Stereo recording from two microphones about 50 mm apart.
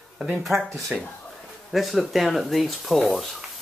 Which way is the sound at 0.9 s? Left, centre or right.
Centre.